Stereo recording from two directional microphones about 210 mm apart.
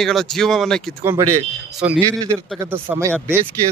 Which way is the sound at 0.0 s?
Centre (ahead or behind).